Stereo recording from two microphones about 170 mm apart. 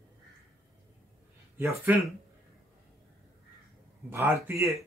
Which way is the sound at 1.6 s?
15° right (ahead or behind).